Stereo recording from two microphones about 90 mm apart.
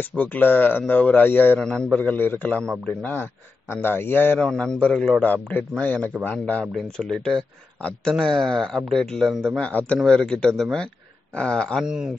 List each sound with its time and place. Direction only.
0.1 s speech: 15° left (ahead or behind)
1.6 s a man's voice: 10° left (ahead or behind)
2.0 s a man's voice: 20° left (ahead or behind)
4.4 s a man's voice: 10° left (ahead or behind)
6.6 s speech: 5° left (ahead or behind)
9.6 s a man's voice: 15° left (ahead or behind)
11.8 s speech: 10° right (ahead or behind)